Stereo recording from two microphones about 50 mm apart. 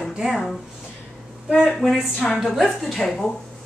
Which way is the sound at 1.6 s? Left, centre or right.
Centre.